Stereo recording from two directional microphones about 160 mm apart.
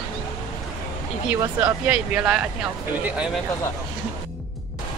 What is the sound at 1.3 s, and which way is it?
A woman's voice, 10° right (ahead or behind).